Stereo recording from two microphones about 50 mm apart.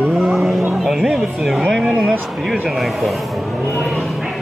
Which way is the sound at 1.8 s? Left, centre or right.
Centre.